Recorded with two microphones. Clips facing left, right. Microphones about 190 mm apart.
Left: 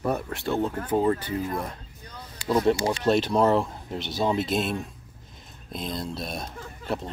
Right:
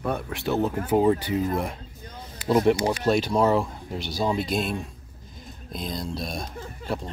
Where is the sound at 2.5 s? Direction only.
20° right (ahead or behind).